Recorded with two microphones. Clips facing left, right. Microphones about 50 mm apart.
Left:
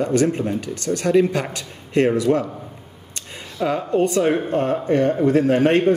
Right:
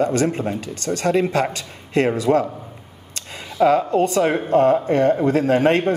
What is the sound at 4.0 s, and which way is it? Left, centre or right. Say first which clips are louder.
A man's voice: even; right.